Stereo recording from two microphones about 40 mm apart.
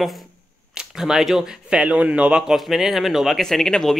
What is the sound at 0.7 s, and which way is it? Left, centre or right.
Speech, centre.